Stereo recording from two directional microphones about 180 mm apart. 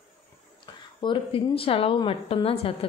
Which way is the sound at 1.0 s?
30° left (ahead or behind).